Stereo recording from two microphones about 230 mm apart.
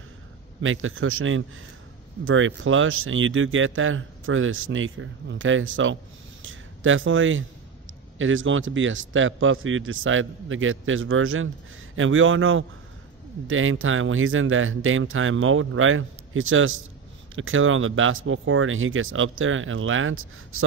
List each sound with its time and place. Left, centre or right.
0.6 s speech: right